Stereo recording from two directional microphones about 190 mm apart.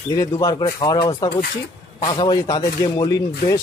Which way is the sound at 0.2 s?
20° left (ahead or behind).